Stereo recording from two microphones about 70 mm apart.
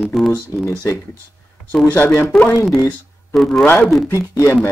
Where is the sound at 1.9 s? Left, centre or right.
Left.